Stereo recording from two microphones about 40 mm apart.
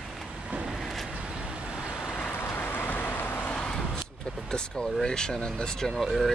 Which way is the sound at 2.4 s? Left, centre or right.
Left.